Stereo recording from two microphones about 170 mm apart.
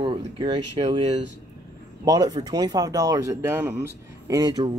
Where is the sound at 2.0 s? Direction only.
25° right (ahead or behind).